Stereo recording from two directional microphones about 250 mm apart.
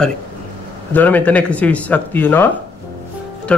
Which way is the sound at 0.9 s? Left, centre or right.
Centre.